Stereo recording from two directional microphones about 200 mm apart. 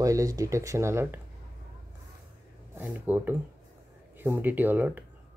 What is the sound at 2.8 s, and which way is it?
Speech, 10° right (ahead or behind).